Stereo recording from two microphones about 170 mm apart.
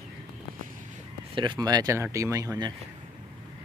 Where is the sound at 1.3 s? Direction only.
25° right (ahead or behind).